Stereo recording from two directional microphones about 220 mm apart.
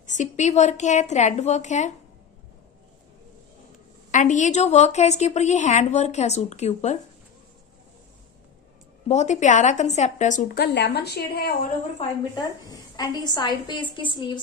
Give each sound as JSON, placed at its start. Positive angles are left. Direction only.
{"t": 0.0, "sound": "a woman's voice", "side_deg": 35}
{"t": 4.1, "sound": "a woman's voice", "side_deg": 35}
{"t": 9.0, "sound": "a woman's voice", "side_deg": 30}
{"t": 12.9, "sound": "a woman's voice", "side_deg": 20}